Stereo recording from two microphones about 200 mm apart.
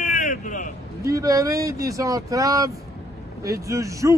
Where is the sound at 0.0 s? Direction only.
40° left (ahead or behind).